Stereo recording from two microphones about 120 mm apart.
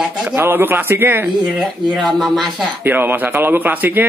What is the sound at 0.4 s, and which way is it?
Speech, 15° right (ahead or behind).